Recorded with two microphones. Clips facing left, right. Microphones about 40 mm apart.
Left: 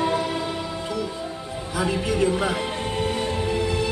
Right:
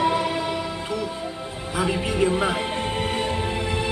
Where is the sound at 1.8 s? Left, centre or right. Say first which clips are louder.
Even; right.